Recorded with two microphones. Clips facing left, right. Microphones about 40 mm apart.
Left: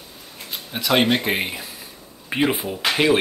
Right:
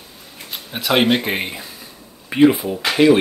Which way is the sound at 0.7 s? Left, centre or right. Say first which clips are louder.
Right 2 dB; centre.